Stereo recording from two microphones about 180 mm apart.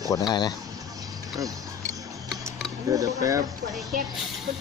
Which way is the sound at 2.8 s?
20° right (ahead or behind).